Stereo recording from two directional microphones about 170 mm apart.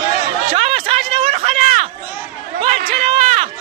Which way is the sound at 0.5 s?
40° right (ahead or behind).